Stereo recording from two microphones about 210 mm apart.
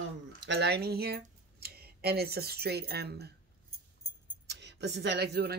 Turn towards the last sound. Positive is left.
turn(degrees=-50)  # may be behind; listen again after turning